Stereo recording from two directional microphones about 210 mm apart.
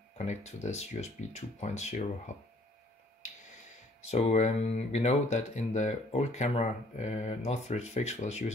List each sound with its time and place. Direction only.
0.2 s speech: 30° left (ahead or behind)
4.0 s speech: 30° left (ahead or behind)